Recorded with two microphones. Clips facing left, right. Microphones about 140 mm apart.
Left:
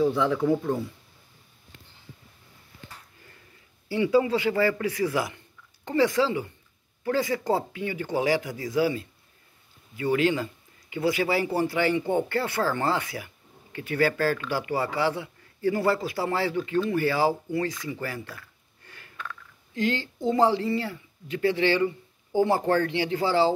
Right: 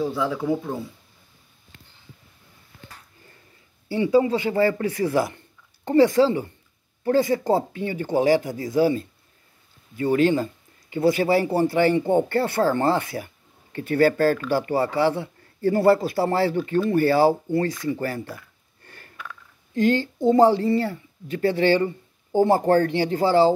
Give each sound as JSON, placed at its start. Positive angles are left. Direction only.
{"t": 0.0, "sound": "speech", "side_deg": -10}
{"t": 3.9, "sound": "a man's voice", "side_deg": -25}
{"t": 18.9, "sound": "a sound", "side_deg": -40}
{"t": 19.7, "sound": "speech", "side_deg": -45}